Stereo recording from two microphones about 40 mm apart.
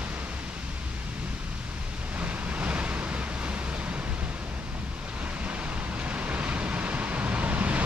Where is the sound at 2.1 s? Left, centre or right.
Right.